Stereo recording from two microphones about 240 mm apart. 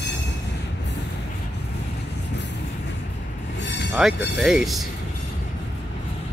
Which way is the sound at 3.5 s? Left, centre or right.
Left.